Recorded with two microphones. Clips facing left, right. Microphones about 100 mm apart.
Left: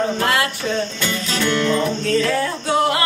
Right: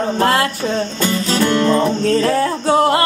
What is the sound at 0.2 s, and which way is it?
Music, 40° right (ahead or behind).